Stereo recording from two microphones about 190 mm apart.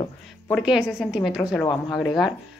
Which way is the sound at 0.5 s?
5° right (ahead or behind).